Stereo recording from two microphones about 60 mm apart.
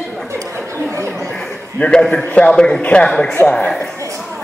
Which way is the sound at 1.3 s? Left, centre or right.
Centre.